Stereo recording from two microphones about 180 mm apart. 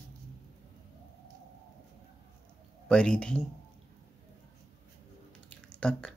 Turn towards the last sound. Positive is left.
turn(degrees=5)  # may be behind; listen again after turning